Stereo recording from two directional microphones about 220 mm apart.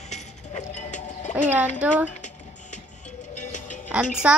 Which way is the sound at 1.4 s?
5° right (ahead or behind).